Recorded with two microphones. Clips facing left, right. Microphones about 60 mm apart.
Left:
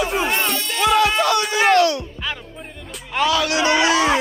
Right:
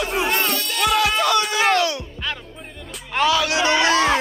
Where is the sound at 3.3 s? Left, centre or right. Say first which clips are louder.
Left 1 dB; right.